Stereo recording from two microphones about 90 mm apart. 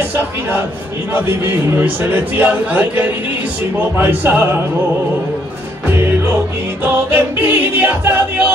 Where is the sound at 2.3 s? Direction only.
20° right (ahead or behind).